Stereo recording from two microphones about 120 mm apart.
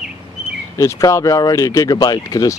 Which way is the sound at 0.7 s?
30° left (ahead or behind).